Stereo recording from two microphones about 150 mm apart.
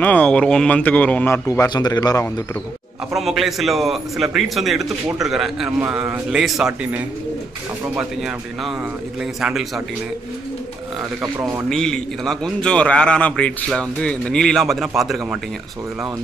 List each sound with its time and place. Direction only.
0.0 s speech: 10° left (ahead or behind); by 2.4 s 25° left (ahead or behind)
3.1 s a man's voice: centre (ahead or behind)
11.3 s a man's voice: 25° right (ahead or behind)
11.7 s a man's voice: 5° left (ahead or behind)